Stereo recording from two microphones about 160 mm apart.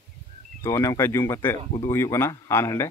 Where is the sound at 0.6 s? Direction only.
20° left (ahead or behind).